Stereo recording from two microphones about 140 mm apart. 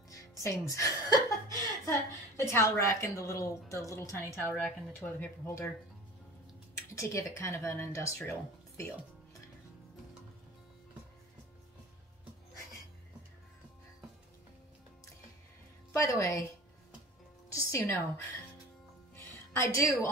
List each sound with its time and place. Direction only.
0.3 s a woman's voice: 20° left (ahead or behind)
4.5 s speech: 10° left (ahead or behind)
6.7 s speech: 20° left (ahead or behind)
15.9 s a woman's voice: 20° left (ahead or behind)
17.5 s a woman's voice: 20° left (ahead or behind)
19.1 s music: 20° left (ahead or behind)